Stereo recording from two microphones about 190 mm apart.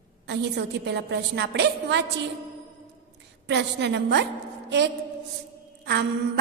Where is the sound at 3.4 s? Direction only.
65° right (ahead or behind).